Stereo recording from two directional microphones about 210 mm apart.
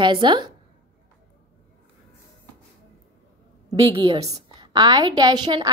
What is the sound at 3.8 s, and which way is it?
A woman's voice, 20° right (ahead or behind).